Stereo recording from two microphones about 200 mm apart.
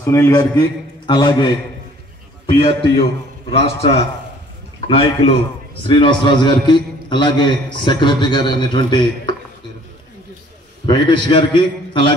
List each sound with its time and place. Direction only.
0.0 s a man's voice: 15° left (ahead or behind)
10.9 s a man's voice: 25° left (ahead or behind)